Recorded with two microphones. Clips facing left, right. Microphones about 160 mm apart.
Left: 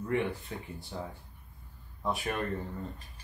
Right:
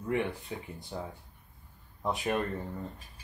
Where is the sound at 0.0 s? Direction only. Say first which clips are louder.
Even; 15° right (ahead or behind).